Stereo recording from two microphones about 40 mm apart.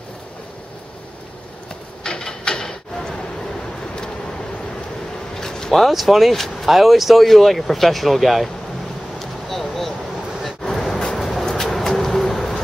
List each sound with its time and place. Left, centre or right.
2.0 s mechanisms: centre
5.3 s a sound: centre
5.7 s speech: centre
9.2 s vehicle: centre
11.1 s pigeon: centre